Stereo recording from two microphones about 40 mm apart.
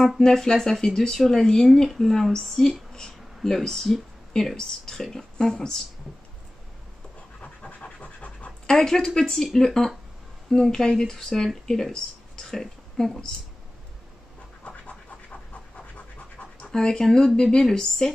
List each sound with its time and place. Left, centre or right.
0.2 s speech: centre
7.6 s scratch: left
8.8 s speech: centre
14.7 s pant: left
16.7 s speech: centre